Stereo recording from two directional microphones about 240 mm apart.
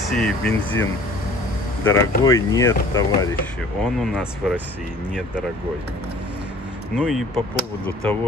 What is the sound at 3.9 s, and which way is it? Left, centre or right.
Speech, centre.